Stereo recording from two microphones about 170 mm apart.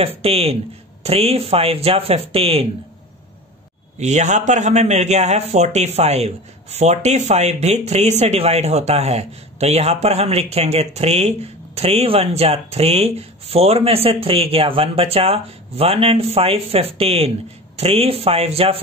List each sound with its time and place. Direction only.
0.0 s speech: 35° right (ahead or behind)
4.0 s speech: 45° right (ahead or behind)